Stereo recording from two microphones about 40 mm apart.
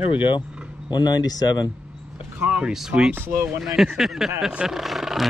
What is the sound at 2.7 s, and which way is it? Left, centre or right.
Speech, centre.